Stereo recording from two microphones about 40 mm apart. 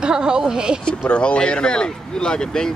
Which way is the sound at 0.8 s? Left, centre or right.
Left.